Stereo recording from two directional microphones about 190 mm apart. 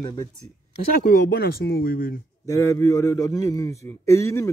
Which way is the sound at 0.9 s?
50° left (ahead or behind).